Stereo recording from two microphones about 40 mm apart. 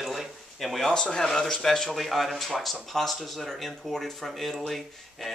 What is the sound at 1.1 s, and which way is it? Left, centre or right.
Speech, centre.